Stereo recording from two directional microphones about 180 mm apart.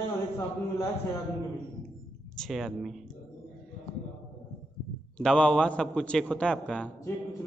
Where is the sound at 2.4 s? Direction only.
Centre (ahead or behind).